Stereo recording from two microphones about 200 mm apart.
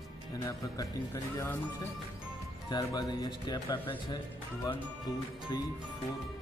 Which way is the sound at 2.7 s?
20° left (ahead or behind).